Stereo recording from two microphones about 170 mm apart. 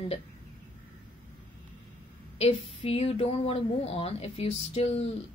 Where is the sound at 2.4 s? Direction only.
35° left (ahead or behind).